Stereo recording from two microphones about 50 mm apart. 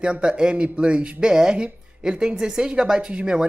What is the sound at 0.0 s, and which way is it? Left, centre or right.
Speech, centre.